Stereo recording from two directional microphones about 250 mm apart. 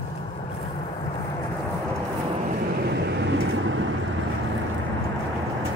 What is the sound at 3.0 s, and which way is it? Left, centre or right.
Vehicle, right.